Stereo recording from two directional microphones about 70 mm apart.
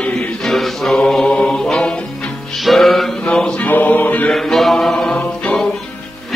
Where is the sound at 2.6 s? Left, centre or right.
Centre; by 4.3 s left.